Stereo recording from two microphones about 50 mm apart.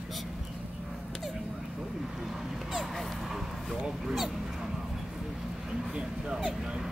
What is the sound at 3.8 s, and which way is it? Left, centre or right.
Dog, centre.